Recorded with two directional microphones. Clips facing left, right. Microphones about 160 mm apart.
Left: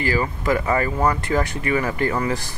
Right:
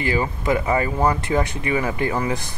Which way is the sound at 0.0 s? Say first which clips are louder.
Even; 20° right (ahead or behind).